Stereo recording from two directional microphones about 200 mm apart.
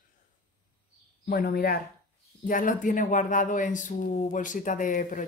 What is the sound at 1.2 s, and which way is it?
Speech, 50° left (ahead or behind).